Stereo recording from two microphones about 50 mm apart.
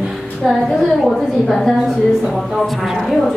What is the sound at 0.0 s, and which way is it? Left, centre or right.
A woman's voice, centre.